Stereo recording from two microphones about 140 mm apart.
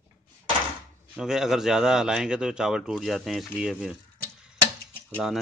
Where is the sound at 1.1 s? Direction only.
5° right (ahead or behind).